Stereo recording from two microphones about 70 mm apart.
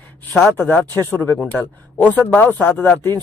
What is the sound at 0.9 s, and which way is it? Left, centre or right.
Speech, left.